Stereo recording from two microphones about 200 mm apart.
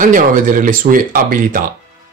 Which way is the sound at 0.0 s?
40° right (ahead or behind).